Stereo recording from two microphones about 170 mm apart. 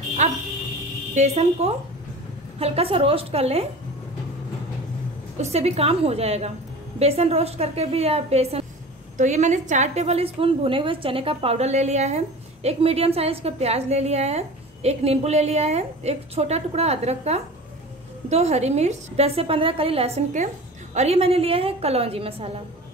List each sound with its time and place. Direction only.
0.2 s a woman's voice: 40° right (ahead or behind)
5.4 s a woman's voice: 40° right (ahead or behind)